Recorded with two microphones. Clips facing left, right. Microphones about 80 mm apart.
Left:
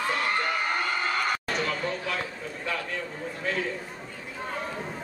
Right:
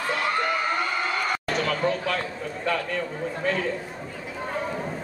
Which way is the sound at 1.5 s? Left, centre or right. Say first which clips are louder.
Right 5 dB; centre.